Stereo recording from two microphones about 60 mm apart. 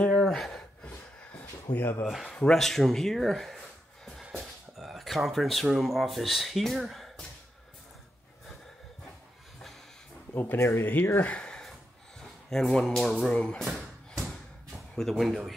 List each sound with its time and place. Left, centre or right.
0.0 s gasp: centre
1.7 s speech: left
2.0 s speech: centre
10.3 s speech: left
10.6 s speech: left
11.2 s speech: centre
12.2 s speech: centre
14.7 s speech: centre